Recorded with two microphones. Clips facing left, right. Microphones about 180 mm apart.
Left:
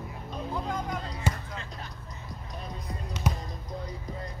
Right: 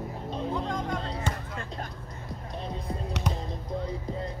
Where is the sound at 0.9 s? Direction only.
30° right (ahead or behind).